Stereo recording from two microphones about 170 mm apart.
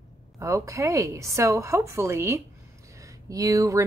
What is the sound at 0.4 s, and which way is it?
A woman's voice, 20° right (ahead or behind).